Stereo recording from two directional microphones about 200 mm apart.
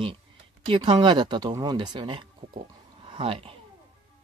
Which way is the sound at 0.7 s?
25° right (ahead or behind).